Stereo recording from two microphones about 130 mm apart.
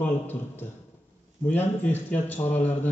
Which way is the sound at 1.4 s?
15° left (ahead or behind).